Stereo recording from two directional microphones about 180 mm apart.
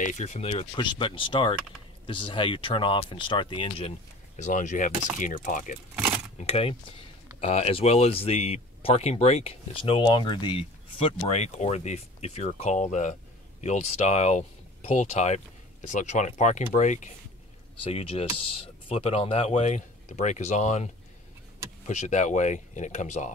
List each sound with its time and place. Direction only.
0.0 s speech: 40° left (ahead or behind)
4.4 s speech: 45° left (ahead or behind)
5.9 s a sound: 10° right (ahead or behind)
6.4 s speech: 30° left (ahead or behind)